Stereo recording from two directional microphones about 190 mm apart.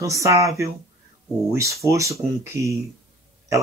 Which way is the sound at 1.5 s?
15° right (ahead or behind).